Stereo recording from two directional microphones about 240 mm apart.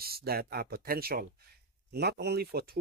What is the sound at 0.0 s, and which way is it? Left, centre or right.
Speech, right.